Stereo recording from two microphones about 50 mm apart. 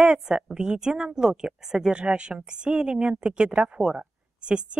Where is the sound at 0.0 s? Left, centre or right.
Centre.